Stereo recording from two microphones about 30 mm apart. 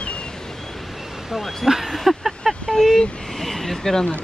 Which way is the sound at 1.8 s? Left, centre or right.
Centre.